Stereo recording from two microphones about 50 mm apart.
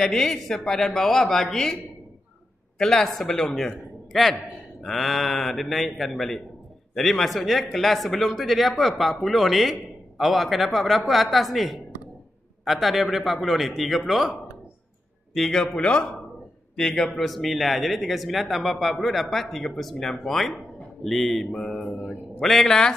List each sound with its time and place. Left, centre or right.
0.0 s speech: centre
2.8 s a man's voice: centre
15.3 s a man's voice: centre
15.7 s a man's voice: centre